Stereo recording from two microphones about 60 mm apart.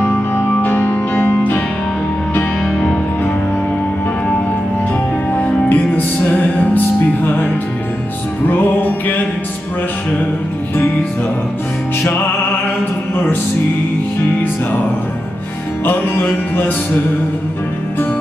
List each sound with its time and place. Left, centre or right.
0.0 s music: left
5.3 s music: left
15.8 s music: left